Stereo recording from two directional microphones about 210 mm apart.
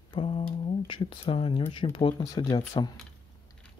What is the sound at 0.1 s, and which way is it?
Mantra, 25° left (ahead or behind).